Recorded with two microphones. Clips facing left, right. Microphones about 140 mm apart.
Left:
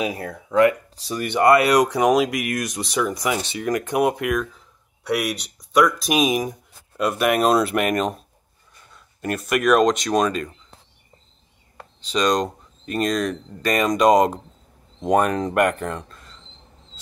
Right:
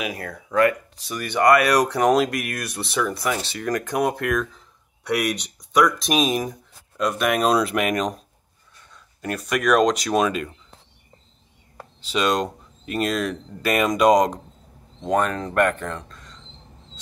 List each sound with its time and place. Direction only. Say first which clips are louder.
0.0 s speech: left 4 dB; 25° left (ahead or behind); by 10.5 s 5° right (ahead or behind)
11.7 s speech: left 1 dB; 5° right (ahead or behind)
15.0 s speech: left 3 dB; 15° left (ahead or behind)